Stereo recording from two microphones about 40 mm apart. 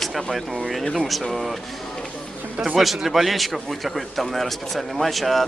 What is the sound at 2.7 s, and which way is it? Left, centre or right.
Speech, centre.